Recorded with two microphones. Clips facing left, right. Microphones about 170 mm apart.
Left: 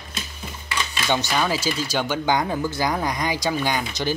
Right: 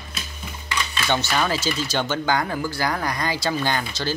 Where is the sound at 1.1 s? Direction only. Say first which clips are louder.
Even; 10° left (ahead or behind).